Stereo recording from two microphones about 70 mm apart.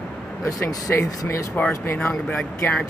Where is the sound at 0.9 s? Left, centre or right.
Left.